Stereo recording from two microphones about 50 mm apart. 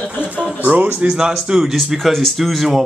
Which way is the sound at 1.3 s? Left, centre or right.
Centre.